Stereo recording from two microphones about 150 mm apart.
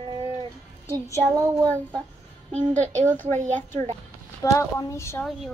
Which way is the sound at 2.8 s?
50° right (ahead or behind).